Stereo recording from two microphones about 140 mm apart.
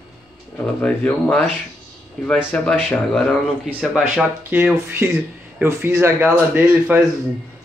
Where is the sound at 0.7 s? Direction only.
10° left (ahead or behind).